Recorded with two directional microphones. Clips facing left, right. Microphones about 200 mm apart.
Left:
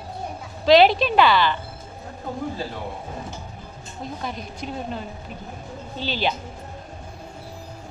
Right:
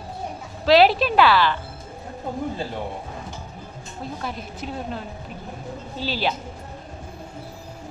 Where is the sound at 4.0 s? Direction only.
5° right (ahead or behind).